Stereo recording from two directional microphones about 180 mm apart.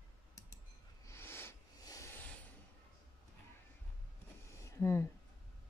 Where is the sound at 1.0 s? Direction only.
15° left (ahead or behind).